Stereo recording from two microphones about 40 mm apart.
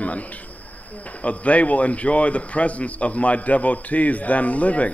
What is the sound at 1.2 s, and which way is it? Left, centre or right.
A man's voice, left.